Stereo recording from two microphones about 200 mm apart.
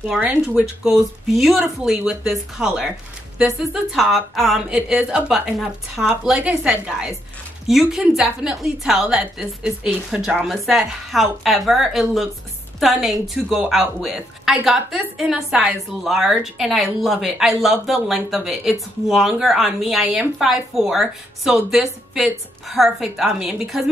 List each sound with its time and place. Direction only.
0.1 s a woman's voice: 5° right (ahead or behind)
3.9 s a woman's voice: centre (ahead or behind)